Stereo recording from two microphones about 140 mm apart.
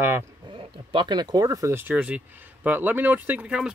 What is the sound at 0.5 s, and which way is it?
Speech, 35° right (ahead or behind).